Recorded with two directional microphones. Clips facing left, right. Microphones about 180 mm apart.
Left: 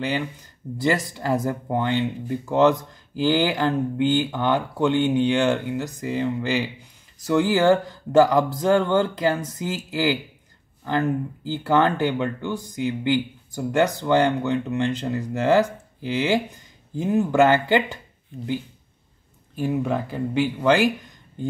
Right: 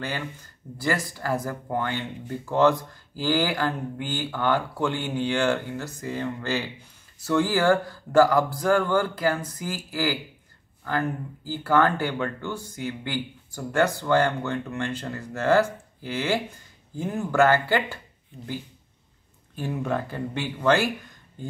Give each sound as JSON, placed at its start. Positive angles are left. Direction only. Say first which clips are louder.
{"t": 0.0, "sound": "speech", "louder": "left 6 dB", "side_deg": 15}
{"t": 19.5, "sound": "speech", "louder": "left 4 dB", "side_deg": 10}